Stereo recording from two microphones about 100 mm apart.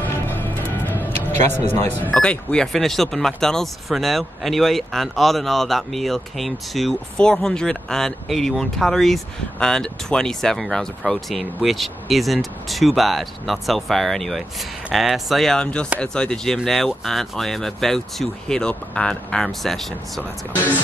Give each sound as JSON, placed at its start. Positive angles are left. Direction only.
{"t": 0.0, "sound": "music", "side_deg": 20}
{"t": 1.9, "sound": "speech", "side_deg": 15}